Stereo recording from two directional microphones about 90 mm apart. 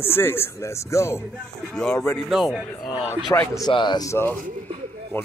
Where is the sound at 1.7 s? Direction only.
5° left (ahead or behind).